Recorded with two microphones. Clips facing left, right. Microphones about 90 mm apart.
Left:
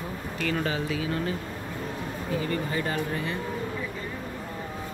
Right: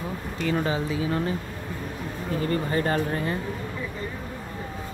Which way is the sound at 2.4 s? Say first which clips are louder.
Right 7 dB; 40° right (ahead or behind).